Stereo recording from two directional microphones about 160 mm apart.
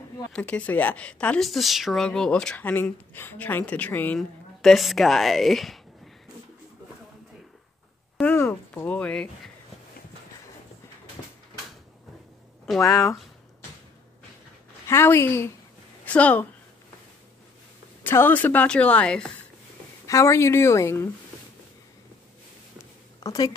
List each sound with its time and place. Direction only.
0.3 s speech: 5° left (ahead or behind)
8.2 s a sound: 15° left (ahead or behind)
12.8 s speech: 20° left (ahead or behind)
14.9 s speech: 15° left (ahead or behind)
18.0 s speech: 15° left (ahead or behind)
20.1 s speech: 20° left (ahead or behind)
23.2 s a woman's voice: 25° left (ahead or behind)